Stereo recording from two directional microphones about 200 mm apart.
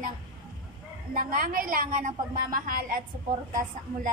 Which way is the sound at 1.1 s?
45° right (ahead or behind).